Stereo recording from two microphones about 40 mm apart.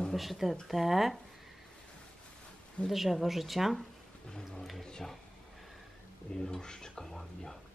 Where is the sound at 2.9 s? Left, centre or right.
Centre.